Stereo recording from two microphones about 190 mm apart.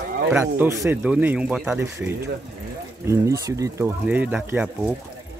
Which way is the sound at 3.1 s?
15° right (ahead or behind).